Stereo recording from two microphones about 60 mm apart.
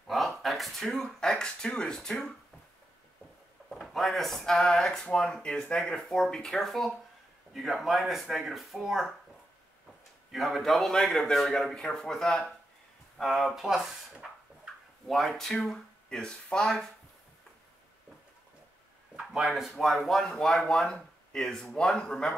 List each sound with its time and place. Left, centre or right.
0.4 s speech: centre
3.7 s speech: centre
10.3 s speech: centre
19.1 s speech: centre